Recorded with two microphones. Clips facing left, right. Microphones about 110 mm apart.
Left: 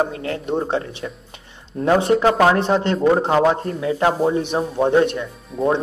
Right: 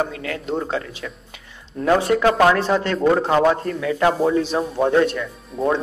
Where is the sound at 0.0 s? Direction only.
30° left (ahead or behind).